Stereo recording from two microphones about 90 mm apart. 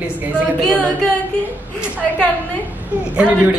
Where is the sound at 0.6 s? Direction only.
10° left (ahead or behind).